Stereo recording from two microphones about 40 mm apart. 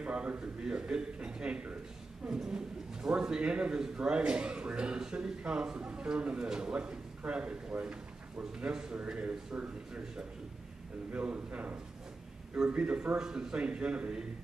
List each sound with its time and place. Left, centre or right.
0.0 s a man's voice: right
2.2 s speech: centre
8.9 s speech: right
11.1 s speech: right